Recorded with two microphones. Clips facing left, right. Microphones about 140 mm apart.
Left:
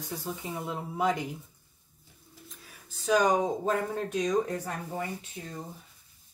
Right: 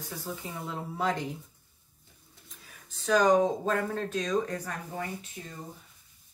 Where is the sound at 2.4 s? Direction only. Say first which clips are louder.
Right 1 dB; centre (ahead or behind).